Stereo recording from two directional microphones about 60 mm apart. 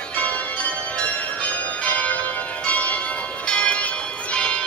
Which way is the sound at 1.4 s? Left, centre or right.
Left.